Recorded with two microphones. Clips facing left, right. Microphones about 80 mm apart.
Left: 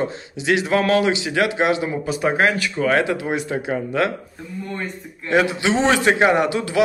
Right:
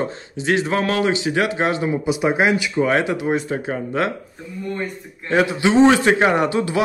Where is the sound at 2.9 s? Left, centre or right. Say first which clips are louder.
Right 1 dB; right.